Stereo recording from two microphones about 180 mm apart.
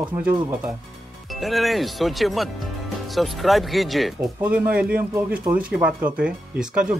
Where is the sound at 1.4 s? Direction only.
Centre (ahead or behind).